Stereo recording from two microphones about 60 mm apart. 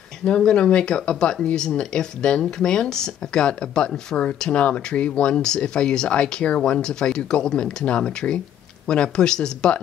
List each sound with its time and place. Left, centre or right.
0.2 s speech: centre